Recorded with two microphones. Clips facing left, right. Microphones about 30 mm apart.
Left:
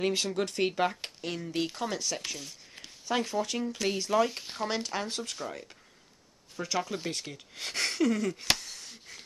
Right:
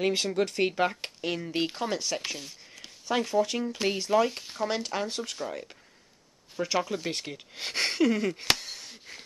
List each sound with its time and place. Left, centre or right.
0.0 s speech: centre
7.1 s speech: right
8.5 s a sound: right